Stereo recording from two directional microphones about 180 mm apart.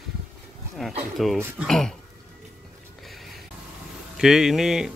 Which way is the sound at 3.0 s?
Centre (ahead or behind).